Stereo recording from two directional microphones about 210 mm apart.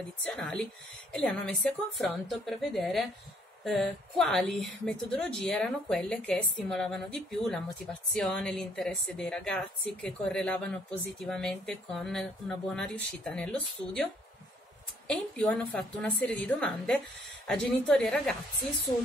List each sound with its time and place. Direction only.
0.2 s a woman's voice: 5° left (ahead or behind)
15.0 s a woman's voice: 5° left (ahead or behind)